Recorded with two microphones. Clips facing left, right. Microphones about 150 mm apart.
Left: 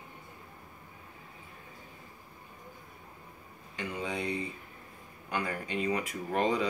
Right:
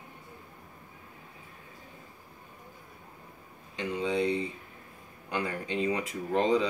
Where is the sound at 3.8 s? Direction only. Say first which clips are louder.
Right 6 dB; 25° right (ahead or behind).